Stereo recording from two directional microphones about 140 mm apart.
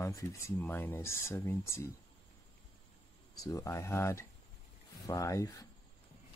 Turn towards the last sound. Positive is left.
turn(degrees=20)  # may be behind; listen again after turning